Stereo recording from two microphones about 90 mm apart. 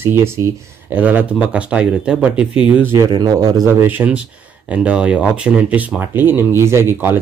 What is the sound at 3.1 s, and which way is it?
Speech, 50° right (ahead or behind).